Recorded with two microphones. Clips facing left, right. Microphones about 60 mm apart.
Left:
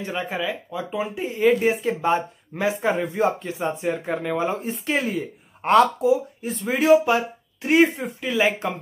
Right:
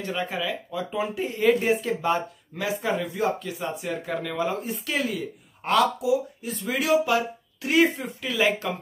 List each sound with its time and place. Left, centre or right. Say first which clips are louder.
0.2 s speech: left 3 dB; centre
2.0 s speech: left 3 dB; left
2.7 s speech: left 1 dB; left
8.2 s speech: left 2 dB; centre